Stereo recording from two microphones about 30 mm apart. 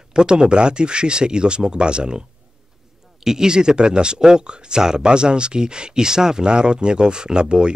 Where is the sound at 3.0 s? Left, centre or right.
Centre.